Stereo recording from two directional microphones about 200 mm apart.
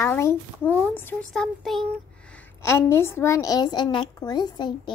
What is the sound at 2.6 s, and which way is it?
A woman's voice, 15° left (ahead or behind).